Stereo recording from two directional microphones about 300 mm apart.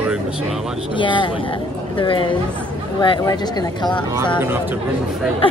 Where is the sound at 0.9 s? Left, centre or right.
Centre.